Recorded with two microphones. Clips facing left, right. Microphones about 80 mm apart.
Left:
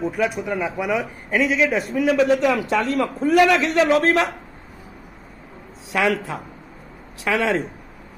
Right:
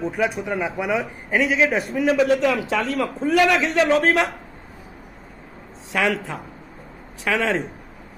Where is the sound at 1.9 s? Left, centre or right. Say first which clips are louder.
Left 1 dB; centre.